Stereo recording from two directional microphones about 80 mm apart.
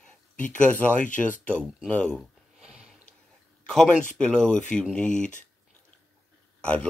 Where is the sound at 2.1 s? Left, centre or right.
Centre.